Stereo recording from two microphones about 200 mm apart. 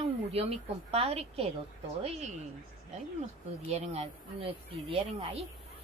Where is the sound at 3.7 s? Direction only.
30° right (ahead or behind).